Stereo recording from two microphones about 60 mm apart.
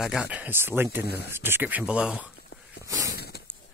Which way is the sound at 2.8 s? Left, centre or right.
Right.